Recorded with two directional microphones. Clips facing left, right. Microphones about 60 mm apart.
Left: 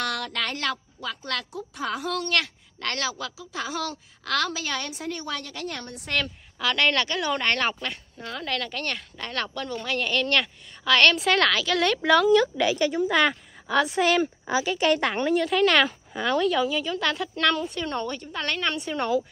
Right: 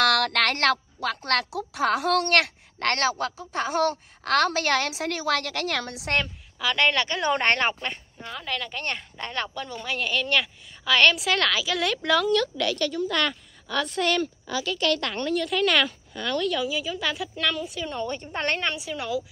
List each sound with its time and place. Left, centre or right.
0.0 s speech: right
6.2 s a woman's voice: centre
7.1 s speech: right
8.2 s a woman's voice: centre
14.2 s a woman's voice: left
15.4 s a woman's voice: centre
18.2 s a woman's voice: right
18.9 s a woman's voice: centre